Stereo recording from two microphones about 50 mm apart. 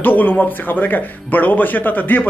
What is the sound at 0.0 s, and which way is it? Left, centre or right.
Speech, left.